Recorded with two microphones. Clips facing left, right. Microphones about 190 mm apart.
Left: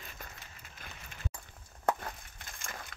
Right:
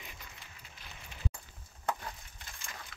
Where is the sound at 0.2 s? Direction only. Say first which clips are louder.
Left 5 dB; 50° left (ahead or behind).